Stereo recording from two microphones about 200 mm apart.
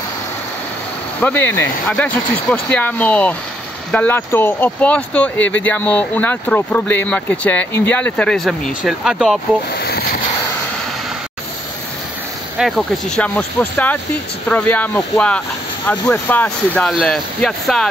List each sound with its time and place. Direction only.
1.2 s speech: 10° left (ahead or behind)
9.8 s a sound: 50° left (ahead or behind)
12.5 s speech: centre (ahead or behind)